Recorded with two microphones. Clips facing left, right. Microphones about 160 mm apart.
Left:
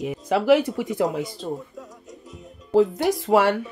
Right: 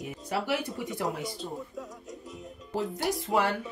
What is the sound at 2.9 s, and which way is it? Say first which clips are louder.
Speech: left 8 dB; 90° left.